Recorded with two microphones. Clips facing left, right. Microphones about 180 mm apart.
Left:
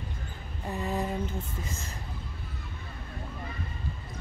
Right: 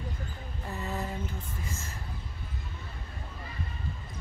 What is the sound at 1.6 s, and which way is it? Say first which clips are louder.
Speech: left 2 dB; 15° left (ahead or behind).